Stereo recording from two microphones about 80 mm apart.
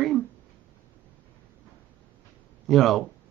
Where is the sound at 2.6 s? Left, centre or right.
Centre.